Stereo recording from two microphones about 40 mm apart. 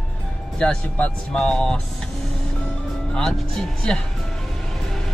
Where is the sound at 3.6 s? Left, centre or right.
Centre.